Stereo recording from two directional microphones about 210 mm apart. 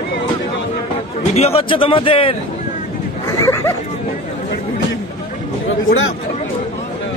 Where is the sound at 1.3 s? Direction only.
30° left (ahead or behind).